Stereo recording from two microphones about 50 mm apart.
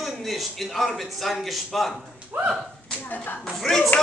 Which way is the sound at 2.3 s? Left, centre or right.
Right.